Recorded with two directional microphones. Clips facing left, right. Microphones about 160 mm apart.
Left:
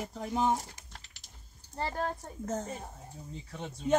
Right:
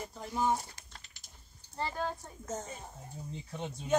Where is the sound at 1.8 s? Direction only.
45° left (ahead or behind).